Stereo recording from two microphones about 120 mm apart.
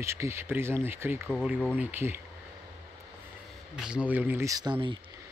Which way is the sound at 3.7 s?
5° right (ahead or behind).